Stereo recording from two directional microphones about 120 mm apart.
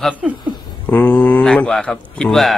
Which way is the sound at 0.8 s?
15° left (ahead or behind).